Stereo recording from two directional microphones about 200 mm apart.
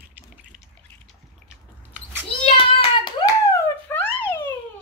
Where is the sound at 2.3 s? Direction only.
25° left (ahead or behind).